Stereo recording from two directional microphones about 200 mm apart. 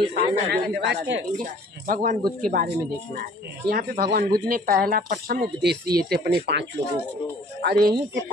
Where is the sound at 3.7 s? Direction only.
50° right (ahead or behind).